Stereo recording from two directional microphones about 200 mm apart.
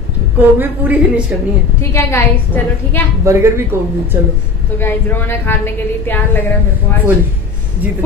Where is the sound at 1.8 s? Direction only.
15° left (ahead or behind).